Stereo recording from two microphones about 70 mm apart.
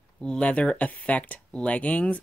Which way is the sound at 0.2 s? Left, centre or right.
Centre.